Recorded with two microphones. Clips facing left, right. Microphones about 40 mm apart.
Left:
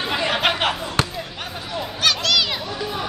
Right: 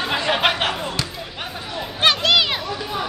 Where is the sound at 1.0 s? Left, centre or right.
Left.